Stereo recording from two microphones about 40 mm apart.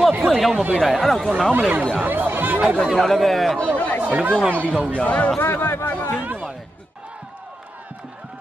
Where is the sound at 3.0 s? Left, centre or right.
Centre.